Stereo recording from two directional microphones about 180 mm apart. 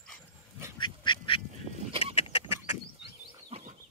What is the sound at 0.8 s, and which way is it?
Duck, 25° left (ahead or behind).